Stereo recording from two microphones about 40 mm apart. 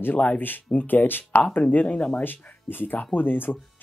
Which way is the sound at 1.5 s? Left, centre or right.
Left.